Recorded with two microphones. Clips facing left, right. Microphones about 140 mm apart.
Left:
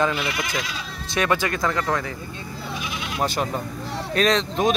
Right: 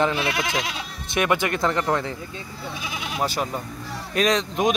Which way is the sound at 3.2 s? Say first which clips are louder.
Left 1 dB; 5° right (ahead or behind).